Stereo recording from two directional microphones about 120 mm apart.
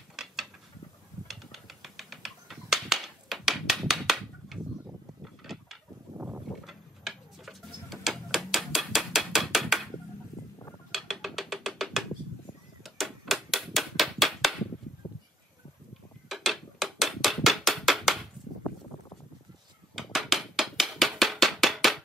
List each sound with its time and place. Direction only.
0.1 s mechanisms: 5° right (ahead or behind)
1.2 s bird flight: centre (ahead or behind)
5.2 s a sound: centre (ahead or behind)
6.1 s boat: 15° right (ahead or behind)
6.6 s tick-tock: centre (ahead or behind)
10.9 s music: centre (ahead or behind)
12.8 s hammer: centre (ahead or behind)
15.0 s a sound: 35° left (ahead or behind)
16.3 s a sound: centre (ahead or behind)
20.0 s hammer: centre (ahead or behind)